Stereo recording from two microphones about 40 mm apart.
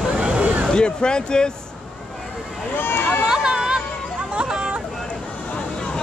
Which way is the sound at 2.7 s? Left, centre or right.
Left.